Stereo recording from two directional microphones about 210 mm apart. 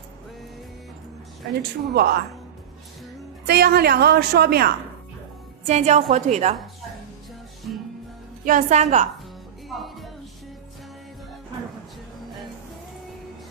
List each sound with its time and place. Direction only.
1.5 s a woman's voice: 45° right (ahead or behind)
3.4 s a woman's voice: 50° right (ahead or behind)
5.7 s a woman's voice: 35° right (ahead or behind)
7.7 s music: centre (ahead or behind)
8.5 s a woman's voice: 35° right (ahead or behind)
9.7 s music: centre (ahead or behind)